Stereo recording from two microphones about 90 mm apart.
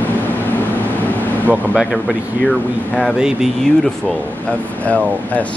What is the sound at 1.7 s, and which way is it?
Speech, centre (ahead or behind).